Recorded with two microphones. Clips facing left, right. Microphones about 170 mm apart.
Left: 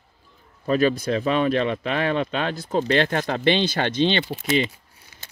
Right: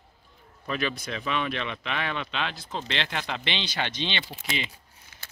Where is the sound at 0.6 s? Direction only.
45° left (ahead or behind).